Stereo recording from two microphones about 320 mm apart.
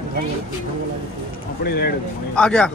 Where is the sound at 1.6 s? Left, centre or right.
Left.